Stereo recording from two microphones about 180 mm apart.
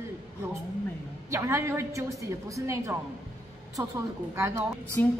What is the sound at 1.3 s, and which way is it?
A woman's voice, 15° right (ahead or behind).